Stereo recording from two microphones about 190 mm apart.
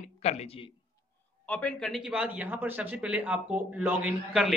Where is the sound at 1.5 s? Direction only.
5° left (ahead or behind).